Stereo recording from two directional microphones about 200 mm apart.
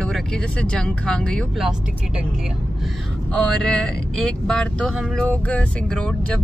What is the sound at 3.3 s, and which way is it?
Speech, 5° left (ahead or behind).